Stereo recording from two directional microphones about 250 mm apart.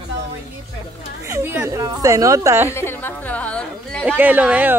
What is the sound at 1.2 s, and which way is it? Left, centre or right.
A woman's voice, centre.